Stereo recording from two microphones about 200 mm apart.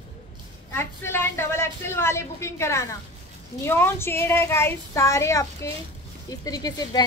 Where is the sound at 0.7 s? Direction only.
10° left (ahead or behind).